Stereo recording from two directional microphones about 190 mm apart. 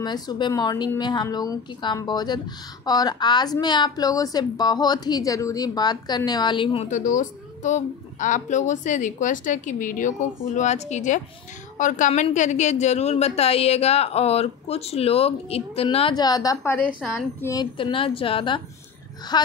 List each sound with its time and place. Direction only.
0.0 s a woman's voice: 20° left (ahead or behind)
6.9 s a woman's voice: 40° left (ahead or behind); by 19.5 s 20° left (ahead or behind)